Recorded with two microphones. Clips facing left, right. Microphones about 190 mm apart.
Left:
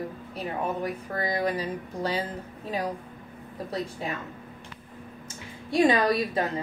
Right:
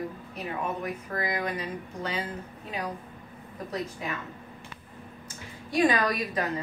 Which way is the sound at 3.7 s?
30° left (ahead or behind).